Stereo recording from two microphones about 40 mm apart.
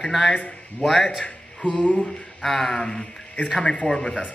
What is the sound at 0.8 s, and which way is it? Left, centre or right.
Speech, centre.